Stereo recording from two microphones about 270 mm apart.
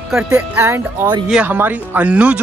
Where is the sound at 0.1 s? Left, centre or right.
Centre.